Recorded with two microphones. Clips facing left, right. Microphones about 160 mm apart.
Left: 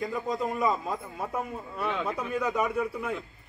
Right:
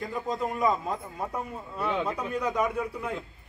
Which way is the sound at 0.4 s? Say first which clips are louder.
Right 2 dB; centre (ahead or behind).